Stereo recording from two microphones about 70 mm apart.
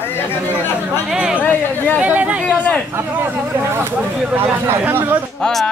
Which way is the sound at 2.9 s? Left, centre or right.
Right.